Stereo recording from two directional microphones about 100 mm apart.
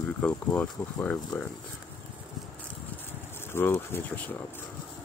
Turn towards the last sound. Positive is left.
turn(degrees=15)  # may be behind; listen again after turning